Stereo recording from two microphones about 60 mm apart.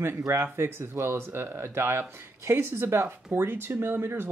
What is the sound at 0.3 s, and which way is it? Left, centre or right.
Speech, right.